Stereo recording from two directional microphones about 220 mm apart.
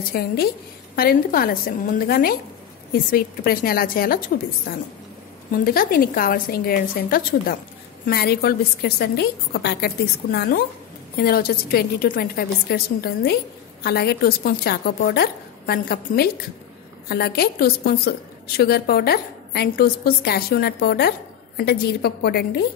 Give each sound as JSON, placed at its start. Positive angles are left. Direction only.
{"t": 0.1, "sound": "a woman's voice", "side_deg": 45}